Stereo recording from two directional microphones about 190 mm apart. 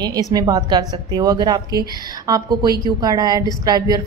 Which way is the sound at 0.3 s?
20° right (ahead or behind).